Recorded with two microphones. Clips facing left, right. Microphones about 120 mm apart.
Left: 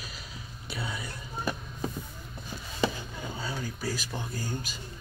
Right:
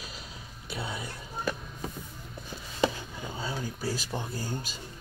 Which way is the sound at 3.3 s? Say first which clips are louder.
Right 2 dB; 25° right (ahead or behind).